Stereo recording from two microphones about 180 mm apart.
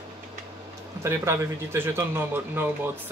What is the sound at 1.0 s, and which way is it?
Speech, 15° right (ahead or behind).